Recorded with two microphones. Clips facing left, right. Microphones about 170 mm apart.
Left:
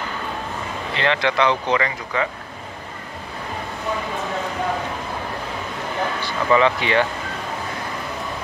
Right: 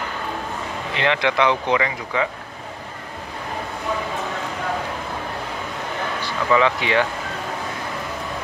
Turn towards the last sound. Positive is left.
turn(degrees=-5)  # may be behind; listen again after turning